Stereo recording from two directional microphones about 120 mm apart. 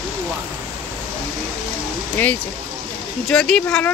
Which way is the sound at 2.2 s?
15° left (ahead or behind).